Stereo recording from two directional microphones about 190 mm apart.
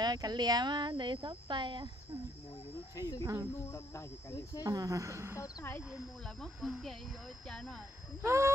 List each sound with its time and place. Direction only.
0.0 s speech: 20° right (ahead or behind)
3.0 s cricket: 15° left (ahead or behind)
4.6 s speech: 20° right (ahead or behind)
5.4 s cricket: 15° left (ahead or behind)
5.9 s speech: centre (ahead or behind)
8.2 s speech: 15° right (ahead or behind)